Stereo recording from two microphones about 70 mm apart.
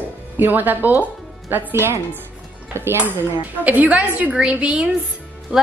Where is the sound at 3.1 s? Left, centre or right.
Right.